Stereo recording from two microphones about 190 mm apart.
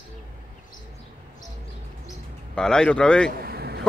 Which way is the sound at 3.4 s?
55° right (ahead or behind).